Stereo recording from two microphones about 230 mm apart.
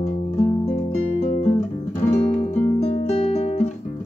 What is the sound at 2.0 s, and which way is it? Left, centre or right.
Music, left.